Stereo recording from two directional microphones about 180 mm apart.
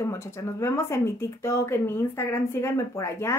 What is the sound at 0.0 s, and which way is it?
Speech, 15° left (ahead or behind).